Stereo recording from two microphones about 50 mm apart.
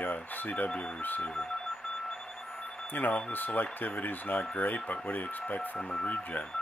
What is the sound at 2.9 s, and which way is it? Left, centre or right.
Speech, left.